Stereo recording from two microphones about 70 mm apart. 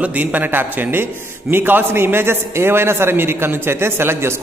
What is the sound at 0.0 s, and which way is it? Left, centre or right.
A man's voice, right.